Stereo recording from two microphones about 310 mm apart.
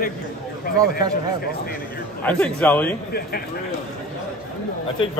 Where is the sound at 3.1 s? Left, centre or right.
Left.